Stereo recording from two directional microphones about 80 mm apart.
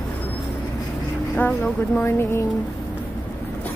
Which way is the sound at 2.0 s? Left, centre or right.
Left.